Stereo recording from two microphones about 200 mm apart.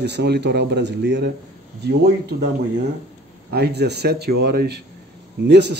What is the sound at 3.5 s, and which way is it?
A man's voice, 55° right (ahead or behind).